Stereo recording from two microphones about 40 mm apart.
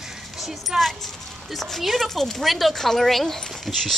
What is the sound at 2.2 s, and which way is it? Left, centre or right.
A woman's voice, centre.